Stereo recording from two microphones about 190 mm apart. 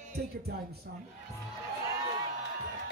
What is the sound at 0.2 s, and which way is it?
Speech, 55° right (ahead or behind).